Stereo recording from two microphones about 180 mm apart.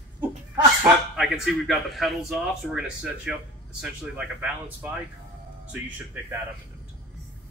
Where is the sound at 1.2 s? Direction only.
Centre (ahead or behind).